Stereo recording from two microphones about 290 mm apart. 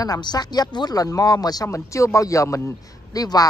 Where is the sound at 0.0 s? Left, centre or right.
Centre.